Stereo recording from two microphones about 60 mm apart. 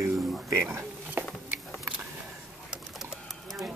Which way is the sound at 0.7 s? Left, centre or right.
Right.